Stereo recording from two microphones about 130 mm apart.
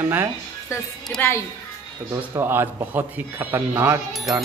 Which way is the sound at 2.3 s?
20° right (ahead or behind).